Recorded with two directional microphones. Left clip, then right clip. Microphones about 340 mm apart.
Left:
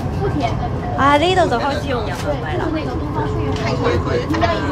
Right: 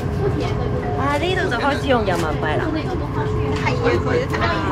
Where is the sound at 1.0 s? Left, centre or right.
Left.